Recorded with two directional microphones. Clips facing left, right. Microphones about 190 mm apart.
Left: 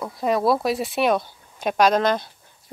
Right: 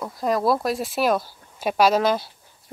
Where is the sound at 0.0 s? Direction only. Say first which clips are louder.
Left 1 dB; centre (ahead or behind).